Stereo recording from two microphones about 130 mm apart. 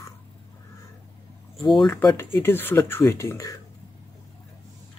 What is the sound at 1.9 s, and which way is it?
Speech, 25° left (ahead or behind).